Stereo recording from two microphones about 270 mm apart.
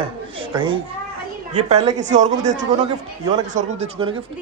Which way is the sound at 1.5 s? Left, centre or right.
Right.